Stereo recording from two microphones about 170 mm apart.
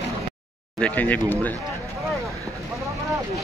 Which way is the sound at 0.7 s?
10° left (ahead or behind).